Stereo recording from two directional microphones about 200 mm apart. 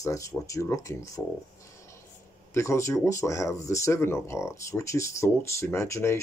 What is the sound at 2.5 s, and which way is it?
Speech, 15° left (ahead or behind).